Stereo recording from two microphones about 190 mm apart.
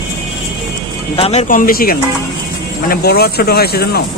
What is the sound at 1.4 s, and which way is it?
Speech, 45° left (ahead or behind).